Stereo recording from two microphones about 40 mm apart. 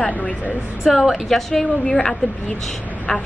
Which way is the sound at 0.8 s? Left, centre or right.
Centre.